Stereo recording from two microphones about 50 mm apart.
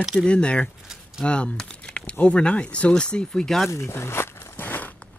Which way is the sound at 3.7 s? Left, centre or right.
Left.